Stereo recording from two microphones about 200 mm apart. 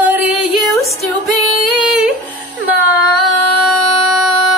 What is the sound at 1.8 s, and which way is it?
Humming, 5° right (ahead or behind).